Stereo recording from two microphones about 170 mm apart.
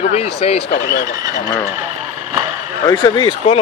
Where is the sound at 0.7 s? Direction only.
60° left (ahead or behind).